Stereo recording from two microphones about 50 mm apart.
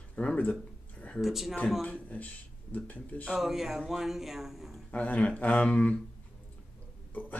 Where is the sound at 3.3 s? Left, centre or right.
Centre.